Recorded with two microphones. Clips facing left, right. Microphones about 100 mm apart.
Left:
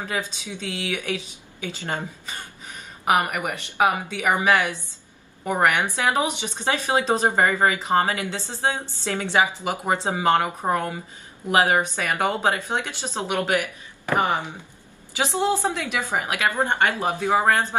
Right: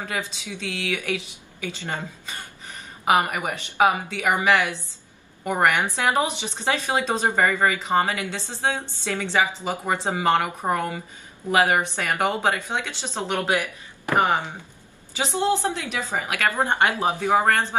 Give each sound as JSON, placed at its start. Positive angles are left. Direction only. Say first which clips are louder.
{"t": 0.0, "sound": "speech", "louder": "left 1 dB", "side_deg": 20}
{"t": 3.2, "sound": "speech", "louder": "even", "side_deg": -20}
{"t": 4.2, "sound": "a woman's voice", "louder": "even", "side_deg": 20}
{"t": 12.1, "sound": "speech", "louder": "right 1 dB", "side_deg": -20}
{"t": 12.4, "sound": "a woman's voice", "louder": "left 1 dB", "side_deg": 15}
{"t": 13.5, "sound": "speech", "louder": "even", "side_deg": -20}
{"t": 15.2, "sound": "speech", "louder": "even", "side_deg": 20}
{"t": 16.5, "sound": "speech", "louder": "right 1 dB", "side_deg": -15}
{"t": 17.2, "sound": "a woman's voice", "louder": "left 1 dB", "side_deg": 15}